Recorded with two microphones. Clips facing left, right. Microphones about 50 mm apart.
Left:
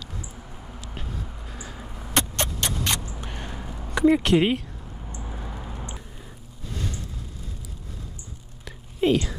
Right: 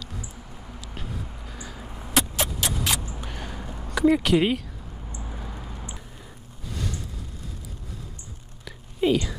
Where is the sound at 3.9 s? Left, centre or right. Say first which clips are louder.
Left 1 dB; centre.